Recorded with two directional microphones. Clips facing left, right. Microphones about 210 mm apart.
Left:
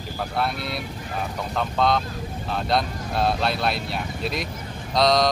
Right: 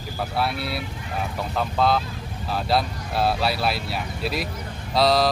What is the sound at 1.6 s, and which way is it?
Speech, 5° right (ahead or behind).